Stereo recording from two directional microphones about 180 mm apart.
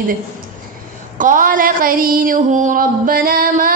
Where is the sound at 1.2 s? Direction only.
50° right (ahead or behind).